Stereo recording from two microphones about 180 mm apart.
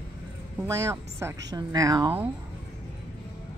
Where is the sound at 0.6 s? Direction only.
15° right (ahead or behind).